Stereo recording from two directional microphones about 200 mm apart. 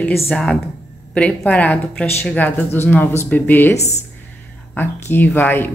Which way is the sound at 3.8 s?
35° left (ahead or behind).